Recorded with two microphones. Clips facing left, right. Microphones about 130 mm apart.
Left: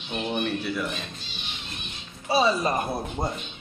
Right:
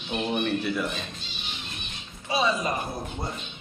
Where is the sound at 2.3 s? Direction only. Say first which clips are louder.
Left 3 dB; 35° left (ahead or behind).